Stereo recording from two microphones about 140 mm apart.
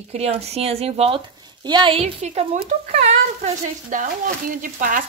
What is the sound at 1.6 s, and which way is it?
A woman's voice, 35° right (ahead or behind).